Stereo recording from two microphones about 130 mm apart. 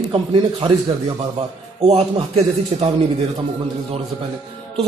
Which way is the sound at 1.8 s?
45° right (ahead or behind).